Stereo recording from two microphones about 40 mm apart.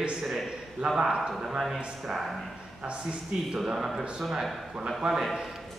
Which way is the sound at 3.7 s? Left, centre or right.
Centre.